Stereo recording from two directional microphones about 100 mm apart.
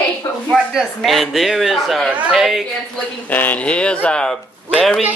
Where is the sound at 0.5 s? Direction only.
Centre (ahead or behind).